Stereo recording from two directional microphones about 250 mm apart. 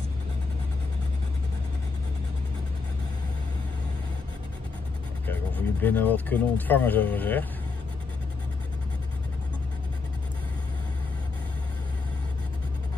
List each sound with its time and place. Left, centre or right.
5.2 s speech: centre